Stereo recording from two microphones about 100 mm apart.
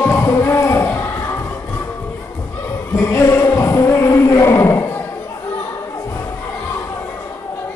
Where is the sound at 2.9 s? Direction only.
30° left (ahead or behind).